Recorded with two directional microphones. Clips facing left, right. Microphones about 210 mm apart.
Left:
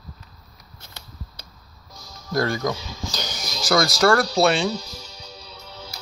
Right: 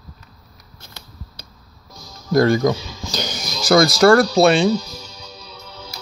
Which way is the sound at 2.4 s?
25° right (ahead or behind).